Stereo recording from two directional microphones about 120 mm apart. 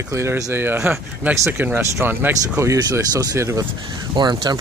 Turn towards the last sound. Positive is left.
turn(degrees=-35)  # may be behind; listen again after turning